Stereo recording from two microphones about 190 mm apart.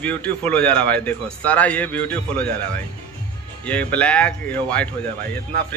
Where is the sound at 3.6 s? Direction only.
5° left (ahead or behind).